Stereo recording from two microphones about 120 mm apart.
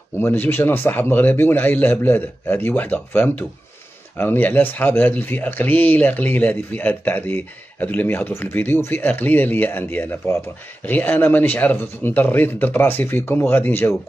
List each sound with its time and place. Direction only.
0.2 s speech: 15° left (ahead or behind)